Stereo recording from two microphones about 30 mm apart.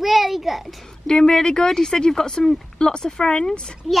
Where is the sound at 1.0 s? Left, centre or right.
Left.